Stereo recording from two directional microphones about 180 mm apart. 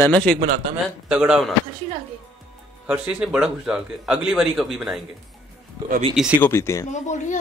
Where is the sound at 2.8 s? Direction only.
5° right (ahead or behind).